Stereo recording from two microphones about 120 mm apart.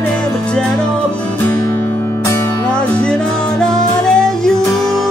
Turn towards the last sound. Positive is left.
turn(degrees=5)  # may be behind; listen again after turning